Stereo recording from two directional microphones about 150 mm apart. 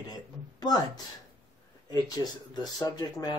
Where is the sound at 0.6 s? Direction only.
25° left (ahead or behind).